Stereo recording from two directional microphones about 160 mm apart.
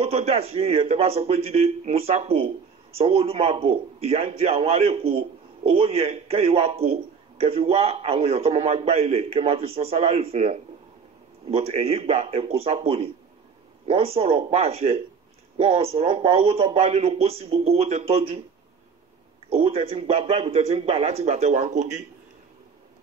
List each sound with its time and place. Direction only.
0.0 s a man's voice: 40° right (ahead or behind)
19.5 s a man's voice: 35° right (ahead or behind)